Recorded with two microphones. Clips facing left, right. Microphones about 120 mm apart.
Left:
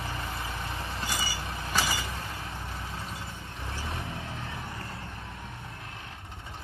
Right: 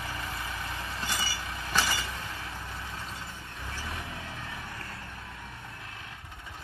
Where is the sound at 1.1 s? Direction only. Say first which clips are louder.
Left 1 dB; 10° left (ahead or behind).